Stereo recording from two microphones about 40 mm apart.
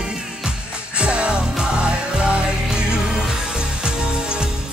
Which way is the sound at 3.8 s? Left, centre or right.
Right.